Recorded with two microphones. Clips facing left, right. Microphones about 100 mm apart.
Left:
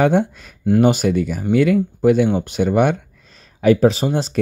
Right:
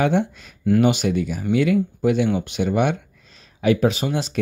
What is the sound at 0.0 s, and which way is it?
Speech, 45° left (ahead or behind).